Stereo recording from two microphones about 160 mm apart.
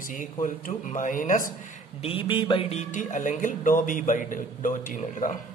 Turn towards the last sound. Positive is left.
turn(degrees=55)  # may be behind; listen again after turning